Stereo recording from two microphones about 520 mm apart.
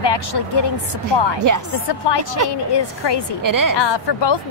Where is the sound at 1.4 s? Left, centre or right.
Right.